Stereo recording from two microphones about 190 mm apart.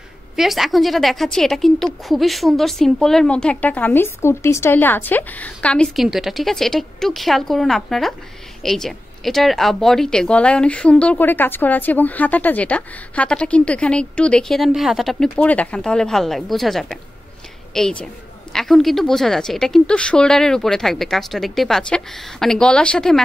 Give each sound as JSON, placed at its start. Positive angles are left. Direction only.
{"t": 0.4, "sound": "speech", "side_deg": 0}